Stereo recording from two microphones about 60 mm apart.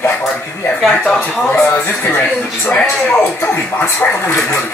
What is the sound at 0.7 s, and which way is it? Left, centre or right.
Speech, centre.